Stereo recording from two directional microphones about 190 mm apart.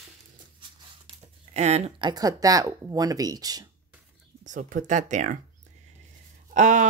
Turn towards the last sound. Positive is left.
turn(degrees=-40)  # may be behind; listen again after turning